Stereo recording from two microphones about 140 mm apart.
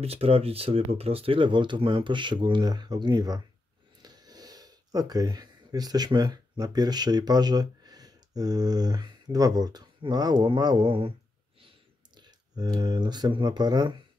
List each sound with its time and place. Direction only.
0.0 s speech: 45° right (ahead or behind); by 3.4 s 30° right (ahead or behind)
4.0 s a sound: 30° right (ahead or behind)
8.4 s speech: 30° right (ahead or behind)
12.2 s speech: 30° right (ahead or behind)